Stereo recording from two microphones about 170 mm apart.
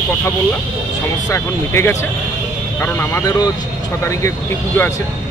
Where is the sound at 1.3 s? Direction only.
15° left (ahead or behind).